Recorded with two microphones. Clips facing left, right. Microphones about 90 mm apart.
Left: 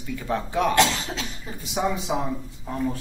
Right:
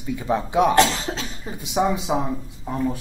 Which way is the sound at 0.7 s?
35° right (ahead or behind).